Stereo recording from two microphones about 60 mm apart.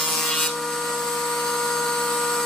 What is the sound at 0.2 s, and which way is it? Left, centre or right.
Wood, centre.